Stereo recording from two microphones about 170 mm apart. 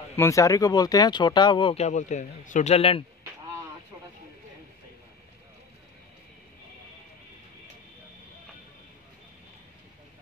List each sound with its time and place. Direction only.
0.1 s speech: 15° left (ahead or behind); by 3.1 s 35° left (ahead or behind)